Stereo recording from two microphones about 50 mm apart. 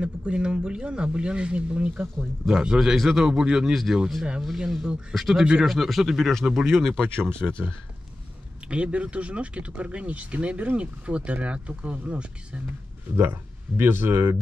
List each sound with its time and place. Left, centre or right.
0.0 s speech: right
2.6 s a man's voice: centre
3.3 s a man's voice: centre
3.7 s speech: centre
7.2 s speech: right
7.4 s speech: right
8.6 s speech: right
13.1 s speech: right